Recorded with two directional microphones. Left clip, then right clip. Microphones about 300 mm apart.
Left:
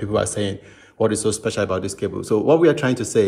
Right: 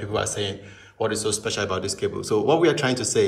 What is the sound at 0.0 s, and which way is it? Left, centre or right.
A man's voice, centre.